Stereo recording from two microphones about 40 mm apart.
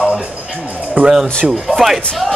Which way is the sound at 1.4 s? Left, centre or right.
Right.